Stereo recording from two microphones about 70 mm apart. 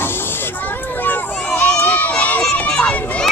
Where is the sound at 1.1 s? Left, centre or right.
Left.